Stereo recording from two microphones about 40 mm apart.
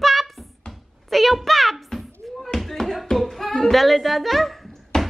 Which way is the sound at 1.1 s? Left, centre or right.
Centre.